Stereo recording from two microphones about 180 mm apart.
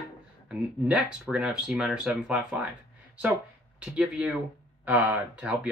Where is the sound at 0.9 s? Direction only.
5° right (ahead or behind).